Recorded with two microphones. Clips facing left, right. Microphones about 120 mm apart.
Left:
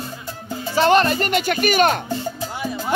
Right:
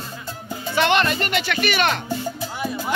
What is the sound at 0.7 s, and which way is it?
Speech, 35° left (ahead or behind).